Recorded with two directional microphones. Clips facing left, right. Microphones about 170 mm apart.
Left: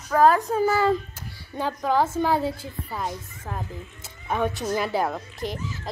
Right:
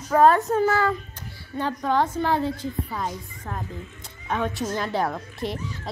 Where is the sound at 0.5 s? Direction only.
10° left (ahead or behind).